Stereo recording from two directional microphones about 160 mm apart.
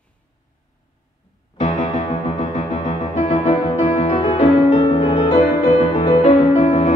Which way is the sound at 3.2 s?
45° left (ahead or behind).